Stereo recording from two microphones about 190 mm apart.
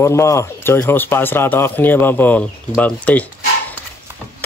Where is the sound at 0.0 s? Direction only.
15° left (ahead or behind).